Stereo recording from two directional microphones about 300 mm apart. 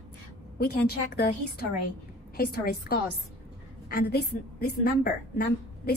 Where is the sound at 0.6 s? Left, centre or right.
Left.